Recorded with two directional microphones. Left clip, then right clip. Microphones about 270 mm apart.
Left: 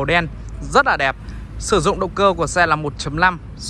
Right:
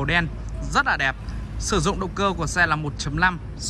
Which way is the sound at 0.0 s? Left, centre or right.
Centre.